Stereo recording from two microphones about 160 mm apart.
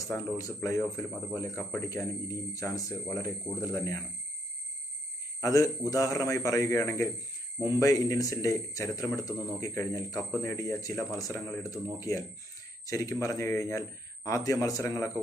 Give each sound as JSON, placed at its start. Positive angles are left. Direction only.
{"t": 0.0, "sound": "a man's voice", "side_deg": 20}
{"t": 5.4, "sound": "a man's voice", "side_deg": 20}
{"t": 7.5, "sound": "speech", "side_deg": -15}
{"t": 7.8, "sound": "a man's voice", "side_deg": 20}